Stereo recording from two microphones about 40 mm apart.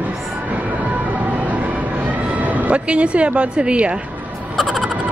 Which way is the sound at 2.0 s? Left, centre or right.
Right.